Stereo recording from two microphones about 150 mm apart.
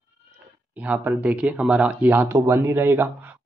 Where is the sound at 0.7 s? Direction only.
10° right (ahead or behind).